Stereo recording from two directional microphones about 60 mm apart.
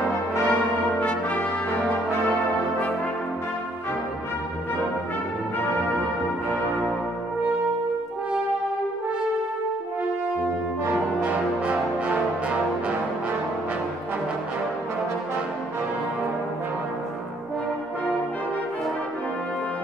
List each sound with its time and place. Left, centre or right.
0.5 s brass instrument: left
10.9 s music: right